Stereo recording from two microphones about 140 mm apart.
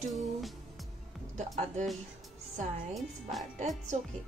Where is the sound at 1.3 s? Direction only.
60° right (ahead or behind).